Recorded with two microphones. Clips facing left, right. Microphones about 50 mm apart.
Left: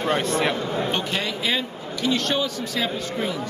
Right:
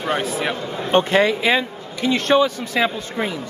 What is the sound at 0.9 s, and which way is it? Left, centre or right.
Speech, right.